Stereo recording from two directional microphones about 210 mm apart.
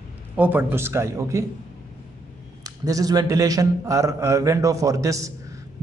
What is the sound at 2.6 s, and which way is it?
A man's voice, 15° right (ahead or behind).